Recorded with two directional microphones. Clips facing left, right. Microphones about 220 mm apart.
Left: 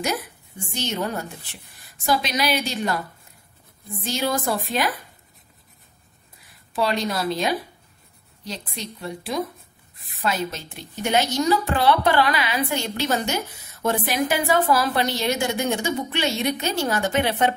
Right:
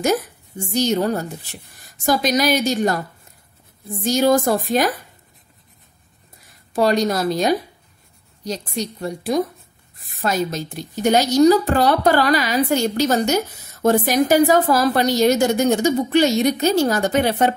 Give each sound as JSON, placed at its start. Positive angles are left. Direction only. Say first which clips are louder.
{"t": 0.7, "sound": "a woman's voice", "louder": "right 8 dB", "side_deg": -40}
{"t": 4.0, "sound": "a woman's voice", "louder": "right 9 dB", "side_deg": -45}
{"t": 6.7, "sound": "a woman's voice", "louder": "right 6 dB", "side_deg": -45}